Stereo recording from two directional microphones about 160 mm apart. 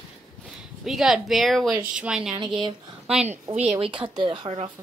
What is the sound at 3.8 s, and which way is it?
Speech, 30° right (ahead or behind).